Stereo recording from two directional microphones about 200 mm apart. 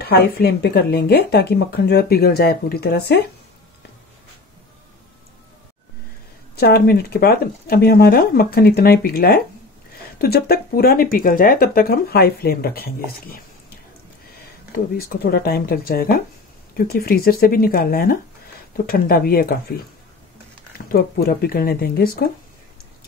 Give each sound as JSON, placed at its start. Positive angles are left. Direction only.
{"t": 0.0, "sound": "speech", "side_deg": 50}
{"t": 6.6, "sound": "speech", "side_deg": 50}
{"t": 15.0, "sound": "speech", "side_deg": 50}
{"t": 20.7, "sound": "speech", "side_deg": 50}